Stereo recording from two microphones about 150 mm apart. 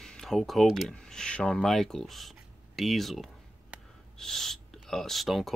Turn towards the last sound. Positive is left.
turn(degrees=0)  # may be behind; listen again after turning